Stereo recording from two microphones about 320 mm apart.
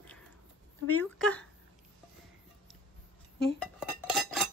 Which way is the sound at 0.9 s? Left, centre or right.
Centre.